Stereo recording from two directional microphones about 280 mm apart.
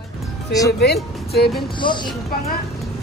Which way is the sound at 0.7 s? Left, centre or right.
Left.